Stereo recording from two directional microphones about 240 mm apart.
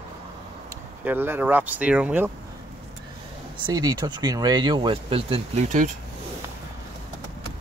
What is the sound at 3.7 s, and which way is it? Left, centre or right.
Speech, centre.